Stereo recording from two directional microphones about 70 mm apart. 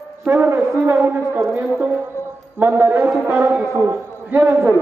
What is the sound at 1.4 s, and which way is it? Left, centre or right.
Speech, right.